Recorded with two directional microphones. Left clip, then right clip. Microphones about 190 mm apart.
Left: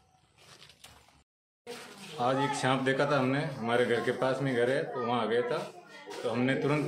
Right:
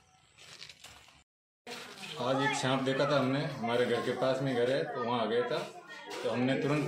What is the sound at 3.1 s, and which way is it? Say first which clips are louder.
Speech: left 1 dB; 35° left (ahead or behind).